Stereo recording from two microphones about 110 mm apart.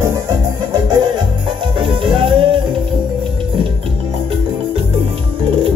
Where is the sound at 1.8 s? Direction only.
55° right (ahead or behind).